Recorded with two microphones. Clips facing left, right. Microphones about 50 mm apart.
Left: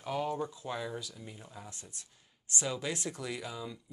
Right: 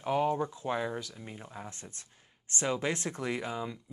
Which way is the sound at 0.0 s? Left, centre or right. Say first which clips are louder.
Right 5 dB; right.